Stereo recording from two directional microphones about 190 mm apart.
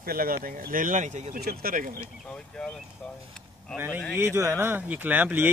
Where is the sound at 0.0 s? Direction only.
50° right (ahead or behind).